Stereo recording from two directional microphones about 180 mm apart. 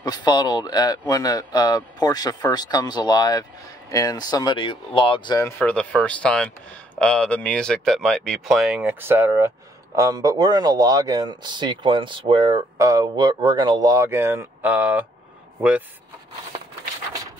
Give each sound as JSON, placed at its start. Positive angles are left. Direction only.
{"t": 0.0, "sound": "speech", "side_deg": 25}
{"t": 5.6, "sound": "speech", "side_deg": 5}